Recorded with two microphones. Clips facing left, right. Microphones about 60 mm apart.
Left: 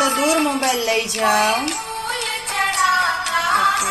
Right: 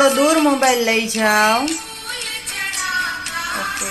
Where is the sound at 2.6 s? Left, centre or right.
Left.